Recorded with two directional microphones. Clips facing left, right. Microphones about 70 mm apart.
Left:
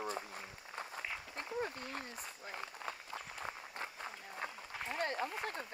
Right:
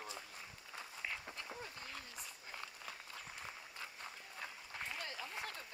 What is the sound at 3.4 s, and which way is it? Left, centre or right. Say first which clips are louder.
Run: left 6 dB; left.